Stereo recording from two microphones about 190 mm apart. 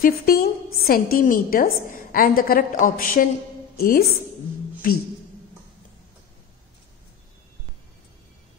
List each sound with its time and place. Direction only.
0.0 s a woman's voice: 50° left (ahead or behind)